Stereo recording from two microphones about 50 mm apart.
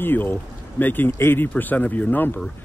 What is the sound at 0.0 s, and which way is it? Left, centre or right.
Speech, left.